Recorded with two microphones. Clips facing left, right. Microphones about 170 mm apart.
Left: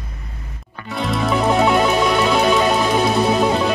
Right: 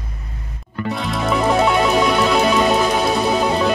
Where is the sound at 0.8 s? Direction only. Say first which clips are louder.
Even; centre (ahead or behind).